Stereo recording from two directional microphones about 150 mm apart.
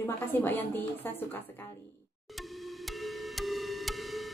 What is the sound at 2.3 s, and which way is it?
Music, centre (ahead or behind).